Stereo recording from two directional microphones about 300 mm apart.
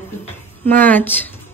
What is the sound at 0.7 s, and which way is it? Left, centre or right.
Speech, centre.